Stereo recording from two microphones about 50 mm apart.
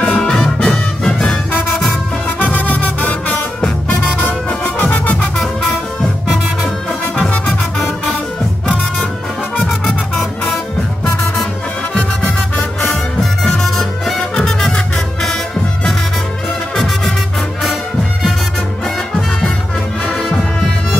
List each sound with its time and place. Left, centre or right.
0.0 s music: centre
1.7 s music: centre
2.2 s music: left
4.6 s music: left
5.4 s music: centre
10.1 s music: left
12.0 s music: left
13.2 s music: centre
16.7 s music: centre